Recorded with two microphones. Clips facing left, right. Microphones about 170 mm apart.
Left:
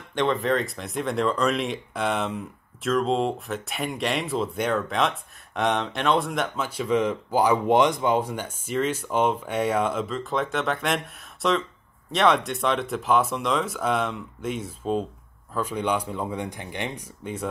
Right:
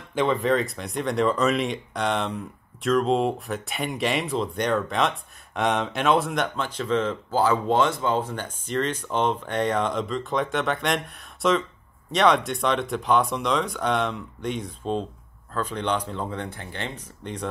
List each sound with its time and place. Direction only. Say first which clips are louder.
0.1 s speech: right 1 dB; centre (ahead or behind)